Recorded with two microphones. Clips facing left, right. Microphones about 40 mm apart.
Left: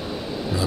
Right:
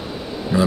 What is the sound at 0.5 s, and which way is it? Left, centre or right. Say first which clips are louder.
Speech: right 9 dB; right.